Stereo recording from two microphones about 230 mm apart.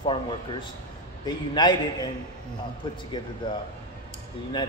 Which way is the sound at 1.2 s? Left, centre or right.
Centre.